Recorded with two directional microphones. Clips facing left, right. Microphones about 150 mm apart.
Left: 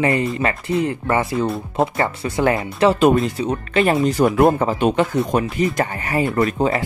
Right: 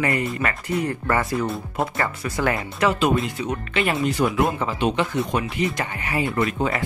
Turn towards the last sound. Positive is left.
turn(degrees=35)  # may be behind; listen again after turning